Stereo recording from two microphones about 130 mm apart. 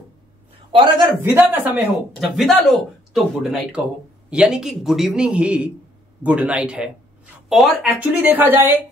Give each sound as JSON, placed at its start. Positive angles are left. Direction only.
{"t": 0.7, "sound": "a man's voice", "side_deg": -40}
{"t": 1.0, "sound": "a man's voice", "side_deg": -15}
{"t": 2.1, "sound": "a man's voice", "side_deg": 0}
{"t": 7.8, "sound": "a man's voice", "side_deg": -15}